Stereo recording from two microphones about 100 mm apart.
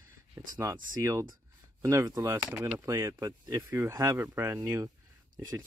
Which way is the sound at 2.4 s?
20° right (ahead or behind).